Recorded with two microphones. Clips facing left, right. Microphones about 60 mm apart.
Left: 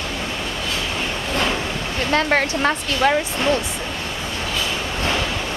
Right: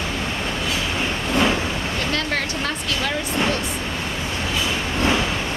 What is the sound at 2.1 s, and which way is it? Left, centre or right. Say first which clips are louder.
Speech: left 10 dB; left.